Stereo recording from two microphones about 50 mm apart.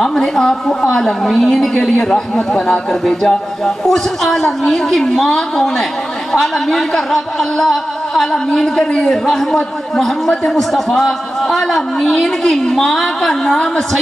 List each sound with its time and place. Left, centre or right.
0.0 s a man's voice: centre
1.7 s a man's voice: left; by 13.6 s centre